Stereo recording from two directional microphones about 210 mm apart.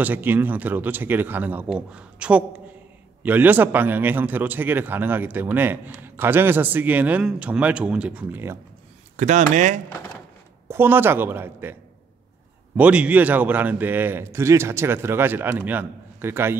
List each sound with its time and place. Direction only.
0.0 s a man's voice: 10° right (ahead or behind)
9.1 s speech: 35° right (ahead or behind)
10.7 s a man's voice: 10° right (ahead or behind)
12.7 s a man's voice: 5° right (ahead or behind)